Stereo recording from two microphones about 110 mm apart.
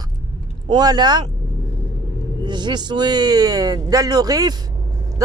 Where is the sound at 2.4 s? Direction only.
40° right (ahead or behind).